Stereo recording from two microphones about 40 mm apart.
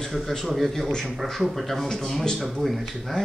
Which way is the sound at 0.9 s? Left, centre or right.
Centre.